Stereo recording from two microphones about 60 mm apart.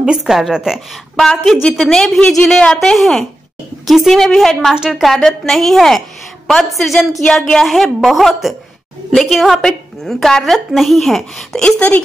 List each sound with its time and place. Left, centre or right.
0.0 s a woman's voice: centre
1.1 s a woman's voice: centre
4.7 s a woman's voice: centre
5.1 s a woman's voice: centre
11.6 s a woman's voice: left